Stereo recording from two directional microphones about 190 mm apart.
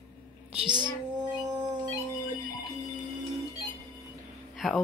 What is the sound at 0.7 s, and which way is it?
Speech, 25° right (ahead or behind).